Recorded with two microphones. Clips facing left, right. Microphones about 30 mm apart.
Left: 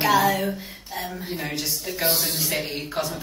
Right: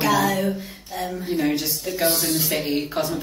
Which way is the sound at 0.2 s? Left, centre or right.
Centre.